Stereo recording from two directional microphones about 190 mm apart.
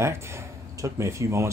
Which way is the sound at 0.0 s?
15° right (ahead or behind).